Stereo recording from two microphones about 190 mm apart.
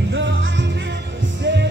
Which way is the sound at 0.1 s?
70° right (ahead or behind).